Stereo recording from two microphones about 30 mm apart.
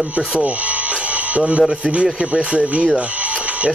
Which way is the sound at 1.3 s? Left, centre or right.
Right.